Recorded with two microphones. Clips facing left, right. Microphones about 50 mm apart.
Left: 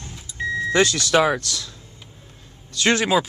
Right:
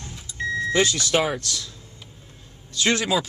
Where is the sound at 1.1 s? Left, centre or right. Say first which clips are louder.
Left 4 dB; left.